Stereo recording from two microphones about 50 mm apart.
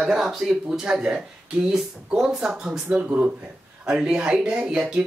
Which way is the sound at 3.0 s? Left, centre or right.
Right.